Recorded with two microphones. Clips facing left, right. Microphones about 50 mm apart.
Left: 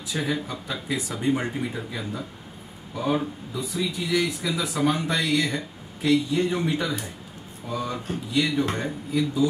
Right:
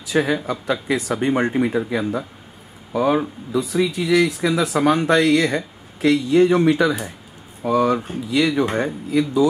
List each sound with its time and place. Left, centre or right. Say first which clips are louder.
0.0 s speech: right 8 dB; right
7.6 s speech: right 12 dB; right
8.7 s speech: right 6 dB; right